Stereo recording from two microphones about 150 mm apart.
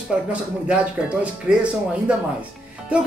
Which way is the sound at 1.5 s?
10° right (ahead or behind).